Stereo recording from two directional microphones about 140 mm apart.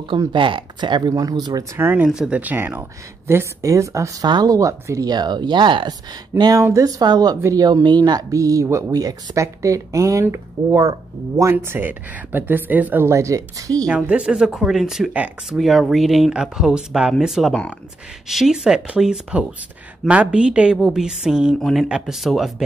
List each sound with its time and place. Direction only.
0.3 s speech: 35° right (ahead or behind)
1.8 s speech: 15° right (ahead or behind)
13.8 s speech: 5° right (ahead or behind)